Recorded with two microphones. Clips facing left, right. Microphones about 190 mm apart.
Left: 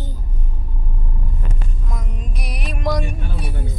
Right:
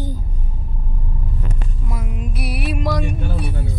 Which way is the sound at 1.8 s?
5° right (ahead or behind).